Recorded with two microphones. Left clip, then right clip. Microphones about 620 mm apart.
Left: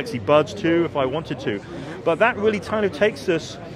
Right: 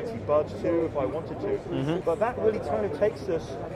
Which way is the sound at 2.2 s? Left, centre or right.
Left.